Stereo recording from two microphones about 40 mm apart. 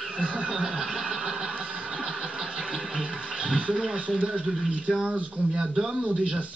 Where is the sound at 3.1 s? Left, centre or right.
Centre.